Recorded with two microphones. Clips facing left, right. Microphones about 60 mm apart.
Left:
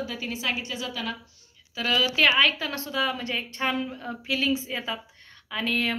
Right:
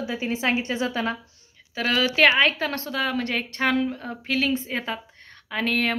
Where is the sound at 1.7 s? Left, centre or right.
Right.